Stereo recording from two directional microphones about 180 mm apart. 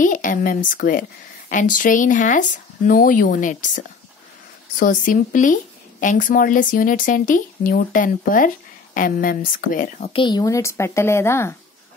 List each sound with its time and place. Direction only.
0.0 s speech: 45° left (ahead or behind)
10.1 s a woman's voice: 25° left (ahead or behind)